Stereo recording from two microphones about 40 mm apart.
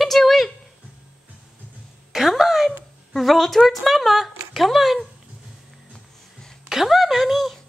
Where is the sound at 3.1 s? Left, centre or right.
Centre.